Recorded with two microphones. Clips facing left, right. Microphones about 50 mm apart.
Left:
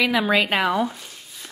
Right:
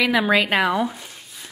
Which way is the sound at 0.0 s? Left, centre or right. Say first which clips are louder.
Right 1 dB; centre.